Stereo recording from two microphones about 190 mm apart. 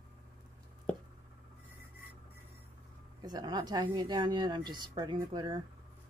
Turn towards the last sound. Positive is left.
turn(degrees=-20)  # may be behind; listen again after turning